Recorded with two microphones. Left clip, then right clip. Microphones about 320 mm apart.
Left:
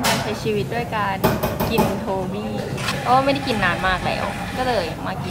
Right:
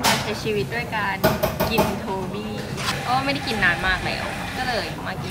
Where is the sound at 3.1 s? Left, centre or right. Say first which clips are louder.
Left 7 dB; centre.